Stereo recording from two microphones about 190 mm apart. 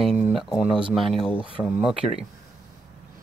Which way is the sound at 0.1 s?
Centre (ahead or behind).